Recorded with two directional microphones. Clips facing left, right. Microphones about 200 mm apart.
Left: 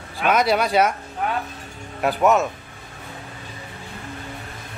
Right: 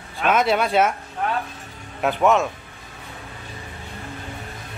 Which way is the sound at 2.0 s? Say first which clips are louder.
Even; centre (ahead or behind).